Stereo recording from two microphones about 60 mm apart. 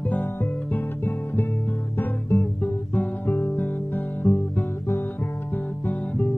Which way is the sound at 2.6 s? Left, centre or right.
Left.